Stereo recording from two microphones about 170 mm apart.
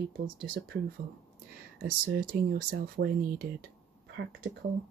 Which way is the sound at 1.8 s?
60° right (ahead or behind).